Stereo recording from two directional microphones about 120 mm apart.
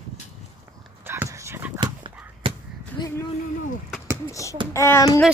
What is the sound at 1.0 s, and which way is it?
Dog, 20° right (ahead or behind).